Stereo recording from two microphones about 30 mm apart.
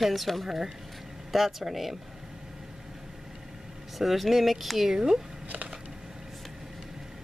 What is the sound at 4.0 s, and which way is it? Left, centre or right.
Speech, centre.